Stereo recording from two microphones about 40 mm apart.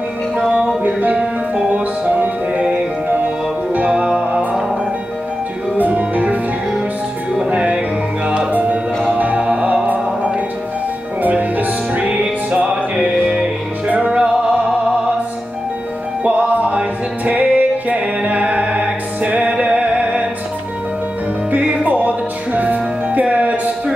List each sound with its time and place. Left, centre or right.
0.5 s music: right
3.8 s music: right
5.8 s music: right
7.4 s music: right
8.5 s music: right
9.5 s music: right
11.2 s music: right
12.0 s music: right
16.3 s music: right
21.5 s music: right